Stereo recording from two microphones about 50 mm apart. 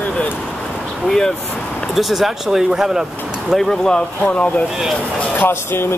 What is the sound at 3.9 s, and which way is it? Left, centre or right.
Speech, centre.